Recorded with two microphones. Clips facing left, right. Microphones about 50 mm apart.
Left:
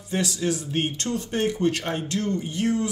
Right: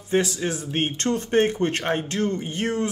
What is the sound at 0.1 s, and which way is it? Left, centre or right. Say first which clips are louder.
Speech: right 3 dB; right.